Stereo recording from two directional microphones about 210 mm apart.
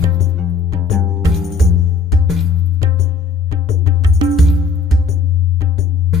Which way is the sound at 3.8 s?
15° right (ahead or behind).